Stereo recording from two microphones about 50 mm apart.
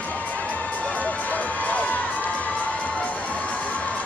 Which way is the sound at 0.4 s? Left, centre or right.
Left.